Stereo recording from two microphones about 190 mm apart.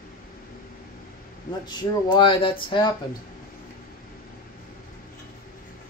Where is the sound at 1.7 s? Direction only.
20° left (ahead or behind).